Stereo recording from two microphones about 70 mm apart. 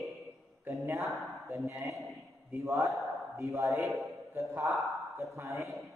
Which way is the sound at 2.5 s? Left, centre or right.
Right.